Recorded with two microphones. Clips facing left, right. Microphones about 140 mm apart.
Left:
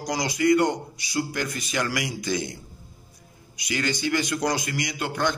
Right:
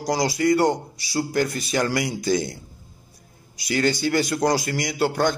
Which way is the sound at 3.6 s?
35° right (ahead or behind).